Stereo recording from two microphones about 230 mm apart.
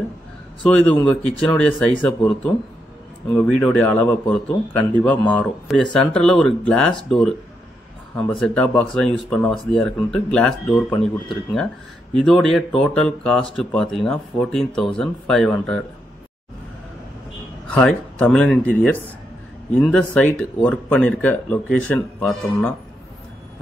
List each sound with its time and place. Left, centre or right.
0.7 s speech: centre
17.7 s speech: centre